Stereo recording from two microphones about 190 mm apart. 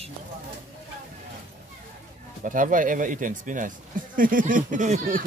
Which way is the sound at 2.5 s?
45° right (ahead or behind).